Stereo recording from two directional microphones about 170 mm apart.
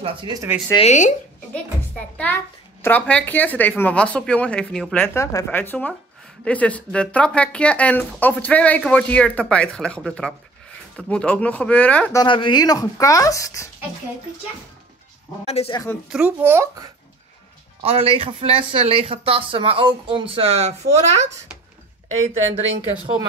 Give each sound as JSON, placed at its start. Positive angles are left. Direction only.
{"t": 0.0, "sound": "speech", "side_deg": -25}
{"t": 0.7, "sound": "speech", "side_deg": 45}
{"t": 1.5, "sound": "speech", "side_deg": 10}
{"t": 5.1, "sound": "speech", "side_deg": 15}
{"t": 12.2, "sound": "speech", "side_deg": 30}
{"t": 15.4, "sound": "speech", "side_deg": 35}
{"t": 16.1, "sound": "a child's voice", "side_deg": -5}
{"t": 17.8, "sound": "speech", "side_deg": -35}